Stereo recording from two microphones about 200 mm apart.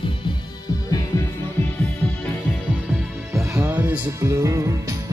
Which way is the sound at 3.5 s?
10° right (ahead or behind).